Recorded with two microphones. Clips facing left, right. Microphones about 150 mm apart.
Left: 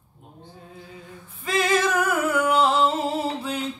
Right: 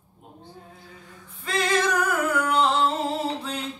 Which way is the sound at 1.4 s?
5° left (ahead or behind).